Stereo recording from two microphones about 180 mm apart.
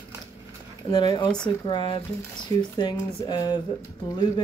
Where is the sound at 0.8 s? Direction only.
25° left (ahead or behind).